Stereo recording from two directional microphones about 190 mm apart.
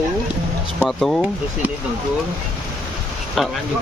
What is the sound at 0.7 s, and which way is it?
Speech, centre (ahead or behind).